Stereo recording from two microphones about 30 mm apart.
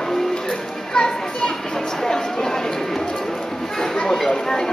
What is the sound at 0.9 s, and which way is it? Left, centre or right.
Children playing, left.